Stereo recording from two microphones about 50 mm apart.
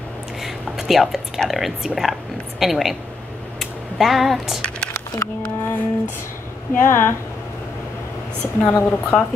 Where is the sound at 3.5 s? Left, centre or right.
Centre.